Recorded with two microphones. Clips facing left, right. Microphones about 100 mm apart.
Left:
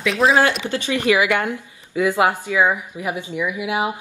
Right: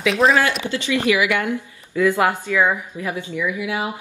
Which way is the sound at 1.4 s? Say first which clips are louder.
Right 1 dB; 20° left (ahead or behind).